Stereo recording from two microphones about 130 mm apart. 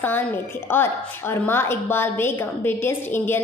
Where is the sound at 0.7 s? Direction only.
15° left (ahead or behind).